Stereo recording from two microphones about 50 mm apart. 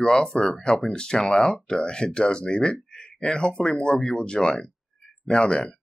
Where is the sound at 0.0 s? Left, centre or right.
Centre.